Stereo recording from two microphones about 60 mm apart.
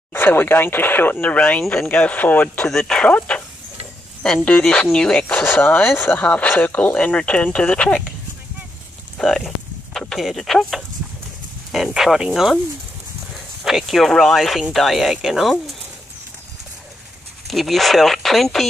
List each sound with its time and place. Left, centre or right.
0.1 s speech: left
2.7 s speech: centre
4.9 s speech: centre
5.2 s speech: left
6.2 s speech: left
9.2 s speech: centre
11.7 s speech: centre
13.7 s speech: centre
17.5 s speech: centre